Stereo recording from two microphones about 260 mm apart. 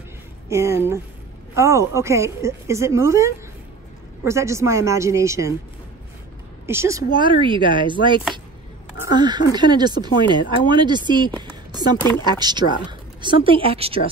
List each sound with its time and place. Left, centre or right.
0.5 s speech: centre
6.6 s speech: centre
11.4 s a sound: centre
12.0 s speech: centre
12.3 s speech: centre